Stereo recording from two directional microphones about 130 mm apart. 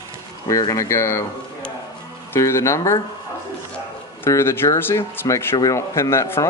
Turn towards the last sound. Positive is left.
turn(degrees=20)  # may be behind; listen again after turning